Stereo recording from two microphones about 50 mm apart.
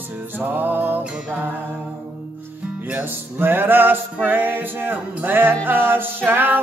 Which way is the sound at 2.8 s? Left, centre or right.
Right.